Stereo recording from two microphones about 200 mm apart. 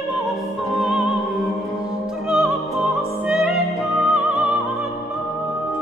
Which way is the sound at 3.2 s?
Centre (ahead or behind).